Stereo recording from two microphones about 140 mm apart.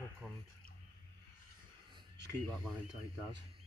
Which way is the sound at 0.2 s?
5° right (ahead or behind).